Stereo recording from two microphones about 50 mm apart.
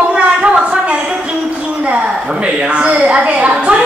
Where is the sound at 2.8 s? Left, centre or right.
Right.